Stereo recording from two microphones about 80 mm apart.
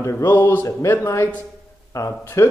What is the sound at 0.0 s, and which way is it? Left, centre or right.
A man's voice, left.